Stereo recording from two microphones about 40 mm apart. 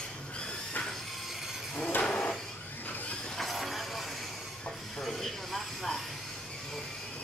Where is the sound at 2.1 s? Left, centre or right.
Left.